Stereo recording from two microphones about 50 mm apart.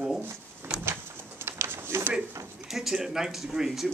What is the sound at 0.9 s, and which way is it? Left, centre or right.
Pigeon, right.